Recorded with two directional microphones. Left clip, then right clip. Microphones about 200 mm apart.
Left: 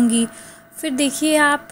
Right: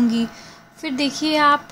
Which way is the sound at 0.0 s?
20° left (ahead or behind).